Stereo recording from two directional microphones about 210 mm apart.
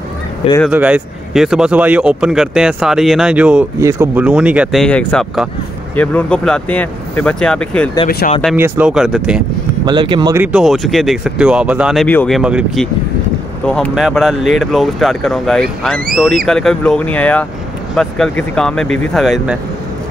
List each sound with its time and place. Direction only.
0.7 s speech: 5° right (ahead or behind)
8.2 s speech: 45° left (ahead or behind)
8.5 s speech: 10° right (ahead or behind)
9.8 s speech: 20° right (ahead or behind)
10.4 s speech: 5° right (ahead or behind)